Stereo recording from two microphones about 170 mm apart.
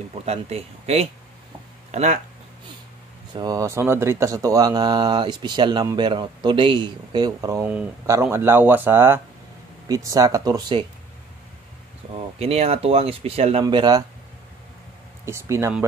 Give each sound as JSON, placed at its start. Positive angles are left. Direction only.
{"t": 0.2, "sound": "speech", "side_deg": -35}
{"t": 3.3, "sound": "speech", "side_deg": -20}
{"t": 12.4, "sound": "speech", "side_deg": -35}
{"t": 15.2, "sound": "speech", "side_deg": -15}